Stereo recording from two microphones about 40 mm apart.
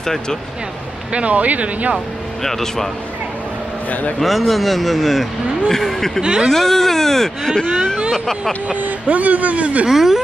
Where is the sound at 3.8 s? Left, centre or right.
Left.